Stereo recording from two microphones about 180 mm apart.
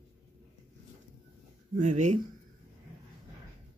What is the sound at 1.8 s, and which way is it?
Speech, 45° right (ahead or behind).